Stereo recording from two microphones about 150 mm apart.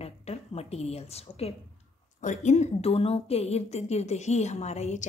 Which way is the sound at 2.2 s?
55° left (ahead or behind).